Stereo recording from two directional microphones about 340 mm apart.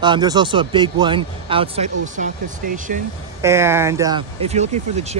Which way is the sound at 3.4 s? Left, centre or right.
Centre.